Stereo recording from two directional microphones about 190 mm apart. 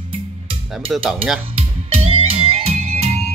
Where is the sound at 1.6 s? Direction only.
30° right (ahead or behind).